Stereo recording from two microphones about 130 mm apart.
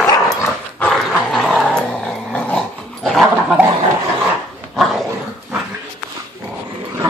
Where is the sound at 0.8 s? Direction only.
Centre (ahead or behind).